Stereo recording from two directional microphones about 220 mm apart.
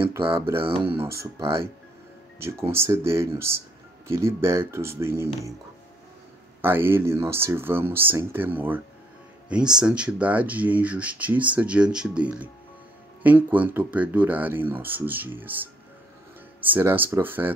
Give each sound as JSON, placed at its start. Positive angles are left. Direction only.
{"t": 0.6, "sound": "speech", "side_deg": -25}
{"t": 0.9, "sound": "speech", "side_deg": -10}
{"t": 2.4, "sound": "speech", "side_deg": -10}
{"t": 6.6, "sound": "speech", "side_deg": -10}